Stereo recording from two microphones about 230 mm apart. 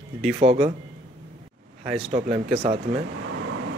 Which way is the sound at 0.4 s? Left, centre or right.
Right.